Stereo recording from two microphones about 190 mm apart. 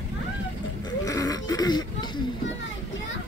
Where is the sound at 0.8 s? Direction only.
20° left (ahead or behind).